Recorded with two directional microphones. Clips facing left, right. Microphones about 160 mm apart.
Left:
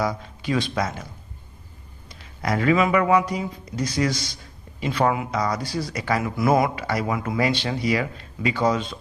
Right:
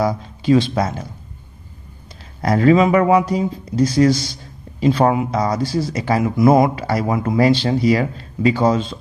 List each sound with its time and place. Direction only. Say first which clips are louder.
0.0 s speech: right 6 dB; 30° right (ahead or behind)
2.4 s speech: right 7 dB; 35° right (ahead or behind)